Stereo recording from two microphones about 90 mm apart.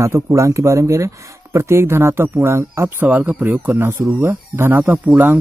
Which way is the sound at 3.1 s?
15° right (ahead or behind).